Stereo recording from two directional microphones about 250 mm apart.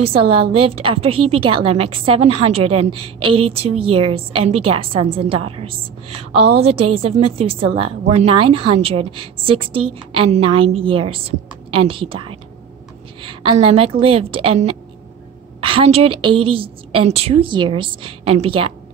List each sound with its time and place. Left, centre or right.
0.0 s a woman's voice: right